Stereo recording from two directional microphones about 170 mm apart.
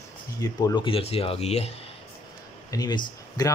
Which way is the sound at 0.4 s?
20° left (ahead or behind).